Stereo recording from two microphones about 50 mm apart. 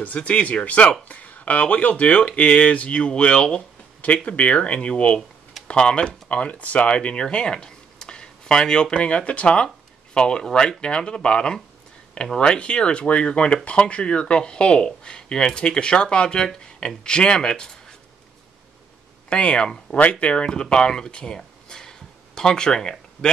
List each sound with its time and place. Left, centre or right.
0.0 s speech: left
19.2 s speech: left
21.4 s a sound: centre